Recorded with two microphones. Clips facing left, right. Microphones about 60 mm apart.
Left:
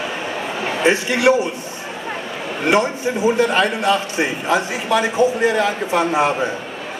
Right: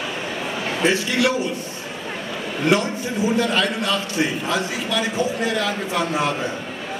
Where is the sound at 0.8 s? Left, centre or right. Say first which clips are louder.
Left 3 dB; left.